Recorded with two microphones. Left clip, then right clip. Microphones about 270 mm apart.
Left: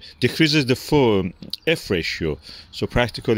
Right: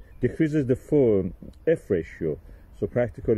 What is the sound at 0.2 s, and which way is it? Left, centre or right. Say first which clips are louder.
Speech: left 6 dB; left.